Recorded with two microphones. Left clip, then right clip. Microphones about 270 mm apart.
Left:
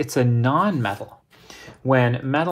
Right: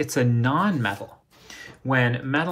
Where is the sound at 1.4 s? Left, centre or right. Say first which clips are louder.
Left 6 dB; left.